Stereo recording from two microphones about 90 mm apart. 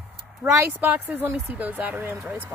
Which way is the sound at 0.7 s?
15° right (ahead or behind).